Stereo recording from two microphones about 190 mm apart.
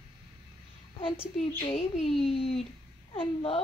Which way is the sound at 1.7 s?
35° left (ahead or behind).